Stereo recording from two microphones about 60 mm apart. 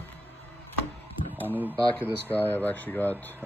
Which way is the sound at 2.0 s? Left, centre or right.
Left.